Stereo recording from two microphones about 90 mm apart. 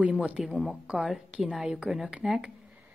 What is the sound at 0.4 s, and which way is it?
Speech, centre (ahead or behind).